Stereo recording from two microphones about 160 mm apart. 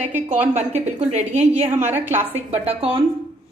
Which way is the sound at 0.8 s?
45° right (ahead or behind).